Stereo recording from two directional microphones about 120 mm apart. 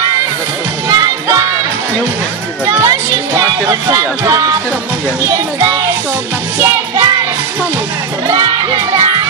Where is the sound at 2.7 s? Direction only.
30° right (ahead or behind).